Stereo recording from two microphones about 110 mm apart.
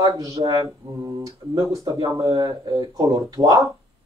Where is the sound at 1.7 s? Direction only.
30° right (ahead or behind).